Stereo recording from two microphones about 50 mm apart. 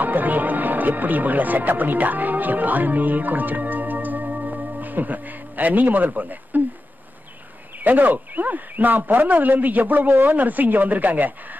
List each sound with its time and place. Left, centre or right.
0.0 s speech: right
7.8 s a man's voice: right